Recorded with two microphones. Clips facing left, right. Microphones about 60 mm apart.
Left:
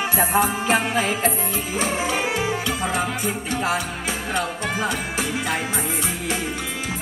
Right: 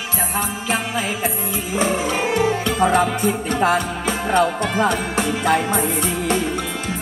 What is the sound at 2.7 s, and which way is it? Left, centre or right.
Music, right.